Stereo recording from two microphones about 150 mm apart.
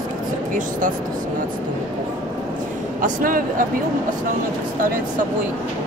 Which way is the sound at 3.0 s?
70° right (ahead or behind).